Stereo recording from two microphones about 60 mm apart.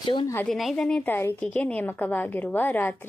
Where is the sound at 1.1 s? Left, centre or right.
Left.